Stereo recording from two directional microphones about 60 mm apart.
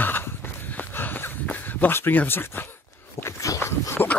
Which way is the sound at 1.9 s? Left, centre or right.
Left.